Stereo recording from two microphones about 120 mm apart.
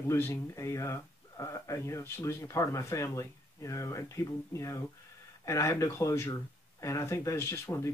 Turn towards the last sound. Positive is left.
turn(degrees=25)  # may be behind; listen again after turning